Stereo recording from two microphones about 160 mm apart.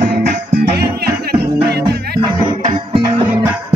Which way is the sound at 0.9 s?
80° right.